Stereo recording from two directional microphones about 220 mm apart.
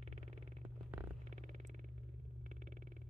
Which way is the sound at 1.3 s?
35° right (ahead or behind).